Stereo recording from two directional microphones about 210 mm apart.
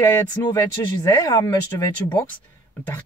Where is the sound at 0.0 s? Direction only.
10° left (ahead or behind).